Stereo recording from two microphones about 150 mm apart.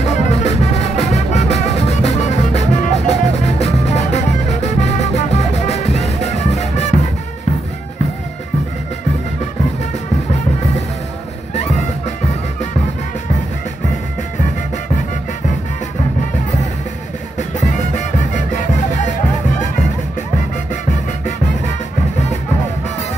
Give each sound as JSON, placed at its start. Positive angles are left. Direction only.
{"t": 0.0, "sound": "music", "side_deg": 50}
{"t": 17.4, "sound": "music", "side_deg": 55}